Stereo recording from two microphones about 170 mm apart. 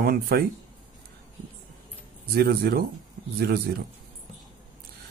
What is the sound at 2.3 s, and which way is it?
Speech, 65° right (ahead or behind).